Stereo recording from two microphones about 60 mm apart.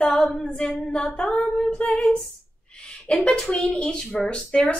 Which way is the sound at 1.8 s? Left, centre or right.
Centre.